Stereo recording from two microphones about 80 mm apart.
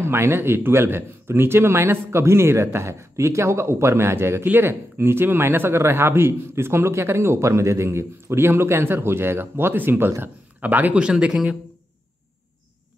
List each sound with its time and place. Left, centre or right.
0.0 s speech: right; by 11.5 s centre